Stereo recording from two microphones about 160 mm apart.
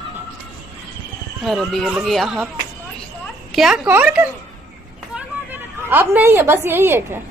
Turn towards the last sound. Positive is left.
turn(degrees=-15)  # may be behind; listen again after turning